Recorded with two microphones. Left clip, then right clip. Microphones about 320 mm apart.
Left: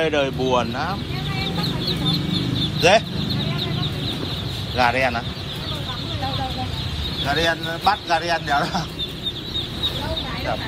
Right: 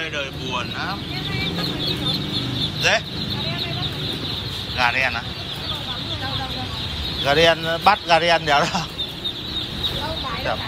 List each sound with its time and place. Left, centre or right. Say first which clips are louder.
0.0 s speech: left 7 dB; centre
2.8 s speech: left 4 dB; centre
4.7 s speech: left 1 dB; centre
7.2 s speech: right 5 dB; centre